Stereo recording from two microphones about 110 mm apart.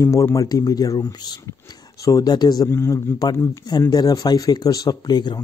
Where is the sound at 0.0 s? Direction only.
25° left (ahead or behind).